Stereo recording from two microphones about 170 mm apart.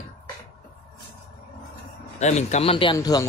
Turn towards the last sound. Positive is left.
turn(degrees=25)  # may be behind; listen again after turning